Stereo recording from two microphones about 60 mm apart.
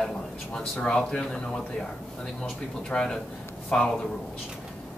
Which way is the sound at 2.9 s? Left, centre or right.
Centre.